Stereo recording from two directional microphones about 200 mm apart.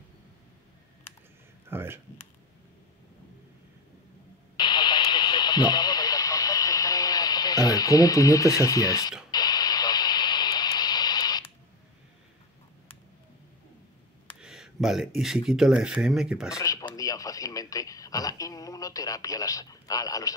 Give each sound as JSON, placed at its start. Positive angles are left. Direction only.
{"t": 1.7, "sound": "speech", "side_deg": -10}
{"t": 4.6, "sound": "radio", "side_deg": 20}
{"t": 14.4, "sound": "speech", "side_deg": -5}
{"t": 16.5, "sound": "speech", "side_deg": 15}